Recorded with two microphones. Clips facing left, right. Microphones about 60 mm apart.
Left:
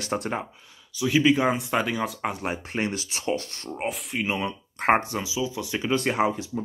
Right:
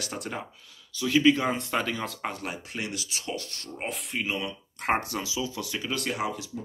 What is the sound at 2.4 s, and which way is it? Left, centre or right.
Speech, left.